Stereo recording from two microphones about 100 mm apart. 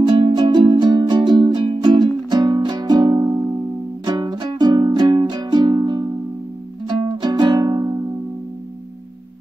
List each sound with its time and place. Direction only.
0.4 s music: 50° right (ahead or behind)
3.2 s music: 30° right (ahead or behind)
4.0 s music: 40° right (ahead or behind)